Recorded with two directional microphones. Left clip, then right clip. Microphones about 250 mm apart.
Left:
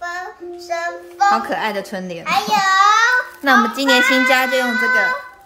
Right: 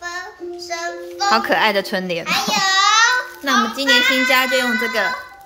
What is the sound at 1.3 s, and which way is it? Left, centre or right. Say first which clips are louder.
Speech: right 3 dB; centre.